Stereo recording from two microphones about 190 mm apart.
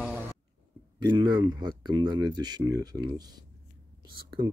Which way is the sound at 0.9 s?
25° right (ahead or behind).